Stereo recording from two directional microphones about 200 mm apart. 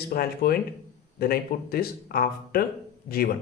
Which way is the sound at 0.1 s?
50° left (ahead or behind).